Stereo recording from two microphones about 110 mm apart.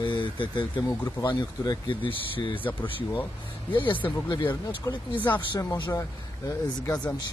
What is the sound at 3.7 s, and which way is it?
Speech, 50° left (ahead or behind).